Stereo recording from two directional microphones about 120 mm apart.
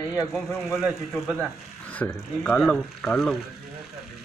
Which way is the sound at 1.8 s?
10° left (ahead or behind).